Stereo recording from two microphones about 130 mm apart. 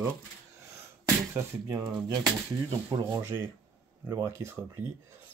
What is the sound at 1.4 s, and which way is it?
Speech, 20° right (ahead or behind).